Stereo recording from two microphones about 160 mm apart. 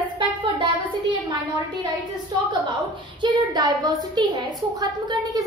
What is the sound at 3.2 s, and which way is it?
A woman's voice, 25° right (ahead or behind).